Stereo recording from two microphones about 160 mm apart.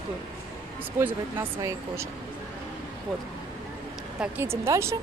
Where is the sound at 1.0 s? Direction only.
15° right (ahead or behind).